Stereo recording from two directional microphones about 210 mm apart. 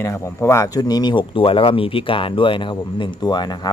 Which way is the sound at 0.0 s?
15° left (ahead or behind).